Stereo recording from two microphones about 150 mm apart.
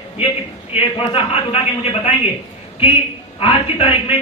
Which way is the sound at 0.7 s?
40° left (ahead or behind).